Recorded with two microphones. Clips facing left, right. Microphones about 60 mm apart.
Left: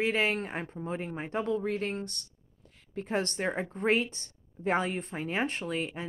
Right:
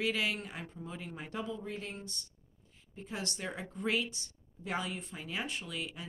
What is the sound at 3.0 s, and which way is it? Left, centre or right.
Speech, left.